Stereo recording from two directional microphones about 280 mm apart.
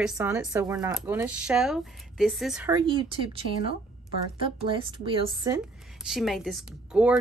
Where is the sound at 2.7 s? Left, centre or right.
Centre.